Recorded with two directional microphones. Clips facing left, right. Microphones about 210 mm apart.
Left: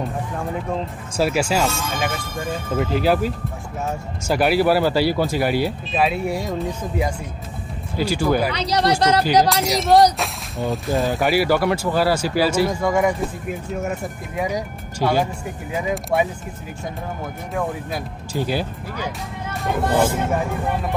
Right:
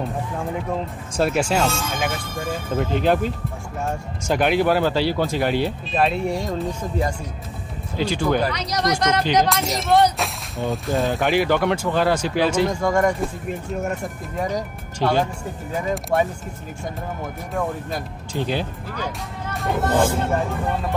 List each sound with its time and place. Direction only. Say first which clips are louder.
1.1 s speech: even; centre (ahead or behind)
8.0 s speech: left 1 dB; 10° left (ahead or behind)
8.5 s speech: left 3 dB; 30° left (ahead or behind)
10.1 s speech: left 1 dB; centre (ahead or behind)
17.6 s speech: even; 5° left (ahead or behind)
19.5 s a sound: even; centre (ahead or behind)
19.8 s speech: left 1 dB; 10° left (ahead or behind)